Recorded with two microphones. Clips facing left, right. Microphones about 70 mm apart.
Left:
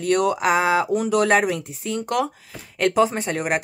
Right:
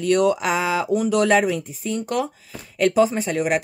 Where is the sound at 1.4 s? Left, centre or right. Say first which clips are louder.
Right 1 dB; left.